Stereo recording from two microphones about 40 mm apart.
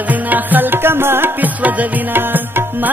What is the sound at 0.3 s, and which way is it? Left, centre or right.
Music, right.